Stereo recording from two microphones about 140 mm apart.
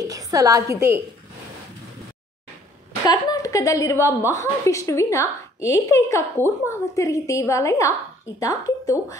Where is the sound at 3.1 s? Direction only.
25° left (ahead or behind).